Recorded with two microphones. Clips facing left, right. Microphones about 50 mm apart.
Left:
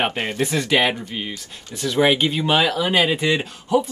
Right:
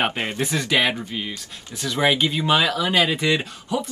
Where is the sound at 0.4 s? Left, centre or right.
Centre.